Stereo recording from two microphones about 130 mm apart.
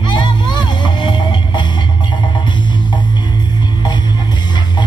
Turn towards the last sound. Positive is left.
turn(degrees=35)  # may be behind; listen again after turning